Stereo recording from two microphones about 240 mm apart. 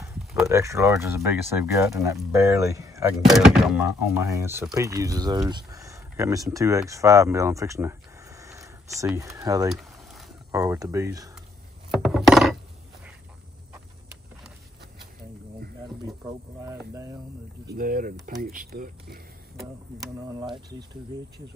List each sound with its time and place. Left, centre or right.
0.5 s speech: centre
3.3 s speech: centre
9.8 s a sound: centre
10.5 s speech: centre
11.9 s wood: centre
16.9 s speech: centre
17.6 s speech: right
20.2 s speech: centre